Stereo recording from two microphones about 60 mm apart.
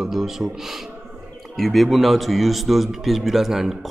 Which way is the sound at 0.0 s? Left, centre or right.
Centre.